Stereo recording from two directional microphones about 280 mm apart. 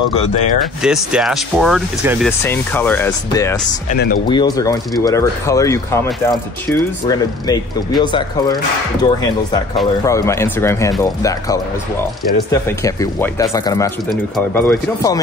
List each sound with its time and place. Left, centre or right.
0.1 s speech: left
0.8 s speech: centre
3.9 s speech: left
4.3 s speech: centre